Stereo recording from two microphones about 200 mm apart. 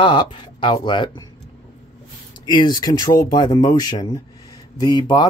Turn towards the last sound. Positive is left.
turn(degrees=25)  # may be behind; listen again after turning